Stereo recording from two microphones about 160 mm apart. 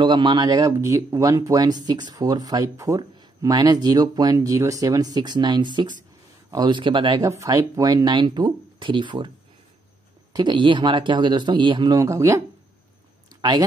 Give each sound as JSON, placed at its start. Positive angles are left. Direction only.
{"t": 0.0, "sound": "speech", "side_deg": -30}
{"t": 10.3, "sound": "speech", "side_deg": -30}